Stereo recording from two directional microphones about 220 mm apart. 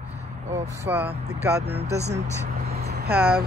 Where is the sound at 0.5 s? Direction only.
10° right (ahead or behind).